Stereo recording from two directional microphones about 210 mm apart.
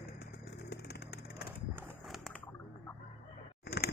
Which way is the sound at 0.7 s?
50° left (ahead or behind).